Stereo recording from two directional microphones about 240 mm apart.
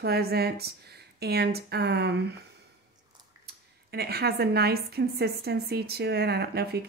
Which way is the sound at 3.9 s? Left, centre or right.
Right.